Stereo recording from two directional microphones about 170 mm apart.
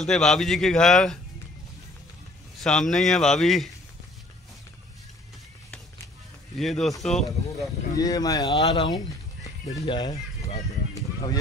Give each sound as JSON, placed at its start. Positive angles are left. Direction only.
{"t": 0.0, "sound": "a man's voice", "side_deg": 5}
{"t": 2.6, "sound": "a man's voice", "side_deg": 5}
{"t": 6.6, "sound": "a man's voice", "side_deg": 0}
{"t": 7.9, "sound": "speech", "side_deg": 20}